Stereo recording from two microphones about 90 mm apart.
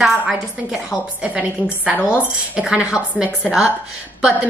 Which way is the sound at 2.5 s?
10° right (ahead or behind).